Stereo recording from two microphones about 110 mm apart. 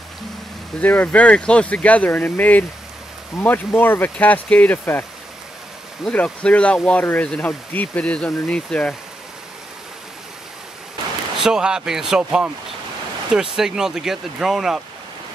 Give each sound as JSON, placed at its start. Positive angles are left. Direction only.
{"t": 0.7, "sound": "speech", "side_deg": 15}
{"t": 6.0, "sound": "speech", "side_deg": 10}
{"t": 11.3, "sound": "speech", "side_deg": -5}